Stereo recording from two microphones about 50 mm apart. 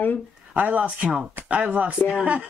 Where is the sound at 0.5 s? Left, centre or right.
Right.